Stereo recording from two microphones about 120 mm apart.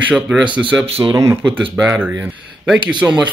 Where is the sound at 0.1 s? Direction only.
10° right (ahead or behind).